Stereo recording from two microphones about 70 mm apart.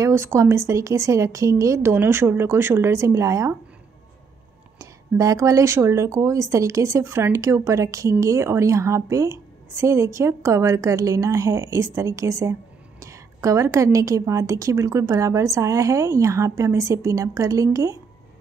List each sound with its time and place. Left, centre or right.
0.0 s speech: right
4.7 s speech: right